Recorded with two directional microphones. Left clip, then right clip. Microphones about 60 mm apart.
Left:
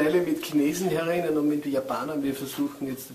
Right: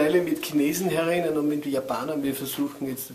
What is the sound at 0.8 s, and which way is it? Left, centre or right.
Speech, right.